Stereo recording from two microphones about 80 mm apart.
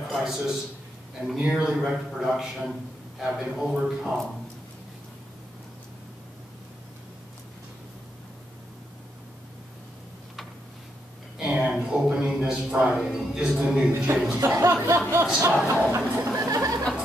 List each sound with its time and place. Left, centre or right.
0.1 s a man's voice: centre
11.3 s a sound: centre
13.0 s a man's voice: centre
14.4 s speech: right
15.5 s a man's voice: centre
16.3 s a sound: right